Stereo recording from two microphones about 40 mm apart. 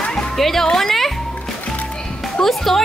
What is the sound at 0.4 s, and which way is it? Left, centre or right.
Speech, centre.